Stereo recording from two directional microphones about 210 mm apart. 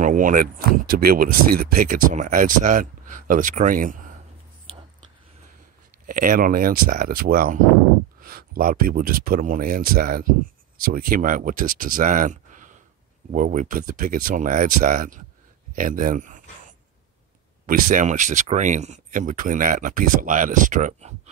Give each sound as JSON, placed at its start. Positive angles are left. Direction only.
{"t": 0.0, "sound": "speech", "side_deg": -40}
{"t": 6.0, "sound": "speech", "side_deg": -40}
{"t": 17.6, "sound": "speech", "side_deg": -40}